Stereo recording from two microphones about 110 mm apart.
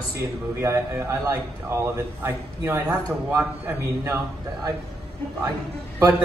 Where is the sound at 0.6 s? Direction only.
25° right (ahead or behind).